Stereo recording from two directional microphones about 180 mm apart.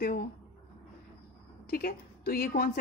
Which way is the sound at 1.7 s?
55° left (ahead or behind).